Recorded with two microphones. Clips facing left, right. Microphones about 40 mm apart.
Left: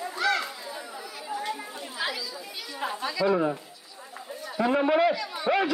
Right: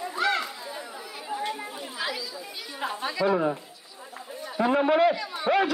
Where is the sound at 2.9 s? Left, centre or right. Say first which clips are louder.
Even; right.